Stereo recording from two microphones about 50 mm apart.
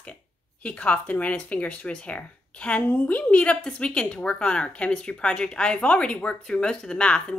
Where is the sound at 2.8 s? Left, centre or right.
Left.